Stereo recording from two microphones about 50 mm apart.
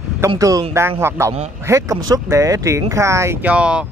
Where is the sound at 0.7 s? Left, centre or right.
Right.